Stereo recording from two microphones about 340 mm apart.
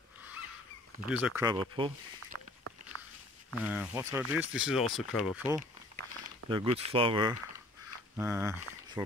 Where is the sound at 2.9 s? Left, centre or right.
Right.